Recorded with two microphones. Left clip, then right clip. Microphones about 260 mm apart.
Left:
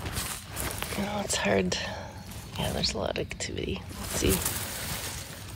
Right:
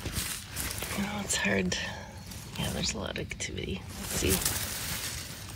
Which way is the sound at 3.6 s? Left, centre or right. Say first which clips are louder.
Left 3 dB; right.